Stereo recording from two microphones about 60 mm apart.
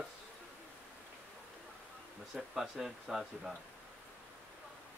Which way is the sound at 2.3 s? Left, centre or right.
Centre.